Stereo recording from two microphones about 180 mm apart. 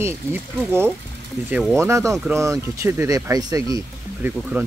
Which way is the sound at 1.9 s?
15° right (ahead or behind).